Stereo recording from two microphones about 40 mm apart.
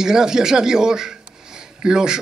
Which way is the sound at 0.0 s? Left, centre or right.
Centre.